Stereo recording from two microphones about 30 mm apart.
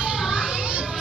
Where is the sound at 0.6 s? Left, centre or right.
Right.